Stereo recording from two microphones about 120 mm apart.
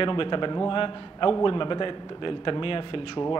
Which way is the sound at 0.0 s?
45° left (ahead or behind).